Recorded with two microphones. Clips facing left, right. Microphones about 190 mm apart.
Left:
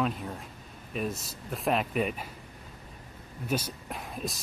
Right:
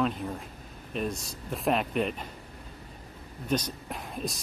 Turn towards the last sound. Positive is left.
turn(degrees=0)  # may be behind; listen again after turning